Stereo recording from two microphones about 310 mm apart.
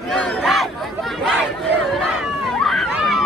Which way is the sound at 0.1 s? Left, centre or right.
Centre.